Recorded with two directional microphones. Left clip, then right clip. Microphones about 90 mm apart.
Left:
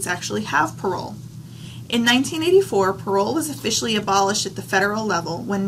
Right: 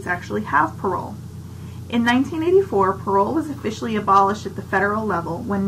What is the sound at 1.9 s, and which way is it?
A woman's voice, 25° left (ahead or behind).